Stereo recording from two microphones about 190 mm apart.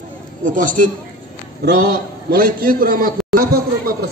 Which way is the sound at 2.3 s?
50° right (ahead or behind).